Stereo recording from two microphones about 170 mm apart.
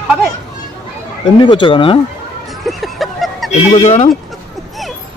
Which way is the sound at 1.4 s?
30° left (ahead or behind).